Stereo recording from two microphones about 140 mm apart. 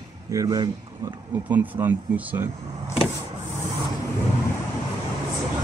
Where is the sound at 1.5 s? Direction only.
10° right (ahead or behind).